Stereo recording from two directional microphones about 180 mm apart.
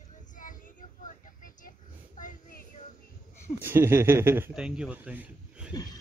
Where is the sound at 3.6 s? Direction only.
15° right (ahead or behind).